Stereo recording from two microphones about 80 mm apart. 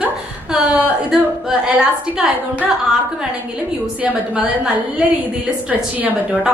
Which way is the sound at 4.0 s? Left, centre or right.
Centre.